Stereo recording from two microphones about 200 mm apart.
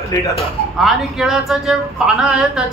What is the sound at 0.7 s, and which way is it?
Speech, centre (ahead or behind).